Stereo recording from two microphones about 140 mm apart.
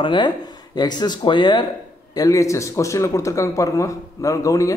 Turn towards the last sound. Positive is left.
turn(degrees=25)  # may be behind; listen again after turning